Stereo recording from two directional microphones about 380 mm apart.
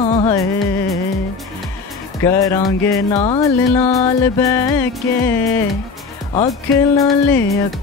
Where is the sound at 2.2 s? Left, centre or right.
Centre.